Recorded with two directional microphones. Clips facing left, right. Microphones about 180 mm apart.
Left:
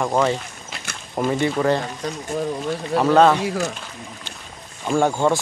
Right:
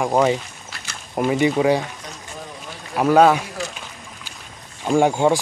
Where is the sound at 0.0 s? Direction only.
15° right (ahead or behind).